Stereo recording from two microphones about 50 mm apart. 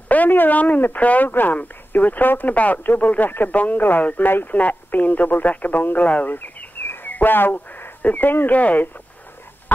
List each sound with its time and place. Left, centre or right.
0.1 s speech: left
4.5 s speech: left
6.3 s bird: left
7.1 s speech: left